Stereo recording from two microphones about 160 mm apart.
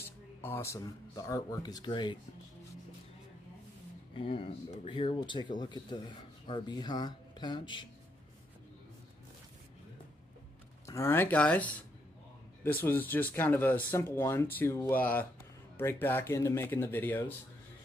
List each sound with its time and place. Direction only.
0.4 s speech: 15° left (ahead or behind)
4.1 s speech: 35° left (ahead or behind)
10.9 s speech: 15° left (ahead or behind)